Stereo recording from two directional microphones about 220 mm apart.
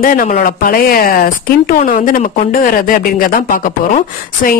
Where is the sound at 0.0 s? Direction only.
40° left (ahead or behind).